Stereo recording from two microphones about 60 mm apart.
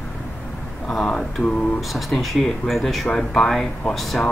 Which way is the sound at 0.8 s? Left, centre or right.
Centre.